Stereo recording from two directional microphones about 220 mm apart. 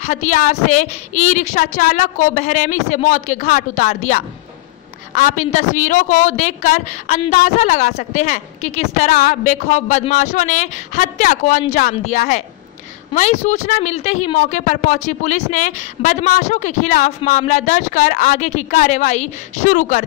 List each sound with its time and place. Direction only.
0.0 s a woman's voice: 30° left (ahead or behind)